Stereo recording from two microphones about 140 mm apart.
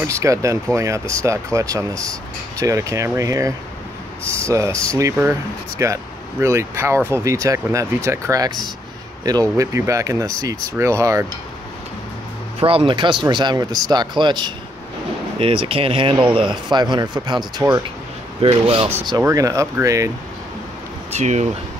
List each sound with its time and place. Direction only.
0.0 s speech: 20° right (ahead or behind)
12.5 s speech: 40° right (ahead or behind); by 17.8 s 25° right (ahead or behind)
18.4 s speech: 40° right (ahead or behind)
19.0 s speech: 25° right (ahead or behind)
21.1 s speech: 55° right (ahead or behind)